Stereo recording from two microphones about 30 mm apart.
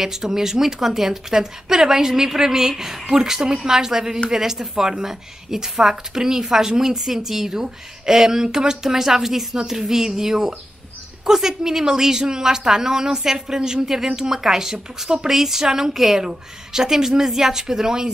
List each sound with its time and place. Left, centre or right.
0.0 s a woman's voice: centre